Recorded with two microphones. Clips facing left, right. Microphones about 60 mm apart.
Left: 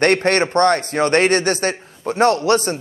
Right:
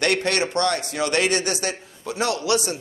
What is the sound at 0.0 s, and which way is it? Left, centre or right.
Speech, left.